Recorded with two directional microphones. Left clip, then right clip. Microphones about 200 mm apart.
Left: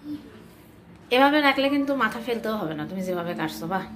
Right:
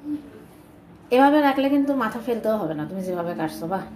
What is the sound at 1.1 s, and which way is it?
A woman's voice, 10° right (ahead or behind).